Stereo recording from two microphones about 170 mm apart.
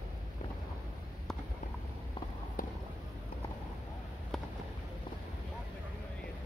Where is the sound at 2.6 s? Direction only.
55° left (ahead or behind).